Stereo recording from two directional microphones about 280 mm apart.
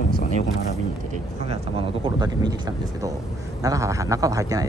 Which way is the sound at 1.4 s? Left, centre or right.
Centre.